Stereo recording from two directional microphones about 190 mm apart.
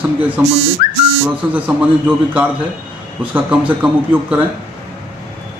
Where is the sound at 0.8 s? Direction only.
50° left (ahead or behind).